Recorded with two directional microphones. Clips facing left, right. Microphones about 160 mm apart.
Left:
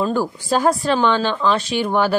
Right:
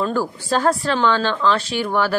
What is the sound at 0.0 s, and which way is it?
Speech, 15° left (ahead or behind).